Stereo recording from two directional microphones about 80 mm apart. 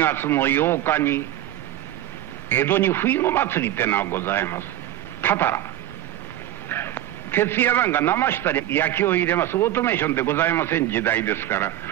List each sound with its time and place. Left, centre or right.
0.0 s a man's voice: left
2.5 s a man's voice: left
6.7 s a man's voice: left